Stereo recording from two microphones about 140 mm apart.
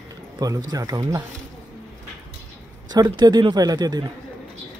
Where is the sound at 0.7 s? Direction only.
25° right (ahead or behind).